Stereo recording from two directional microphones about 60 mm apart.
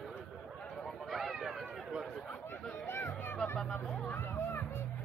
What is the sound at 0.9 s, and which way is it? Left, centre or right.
Run, centre.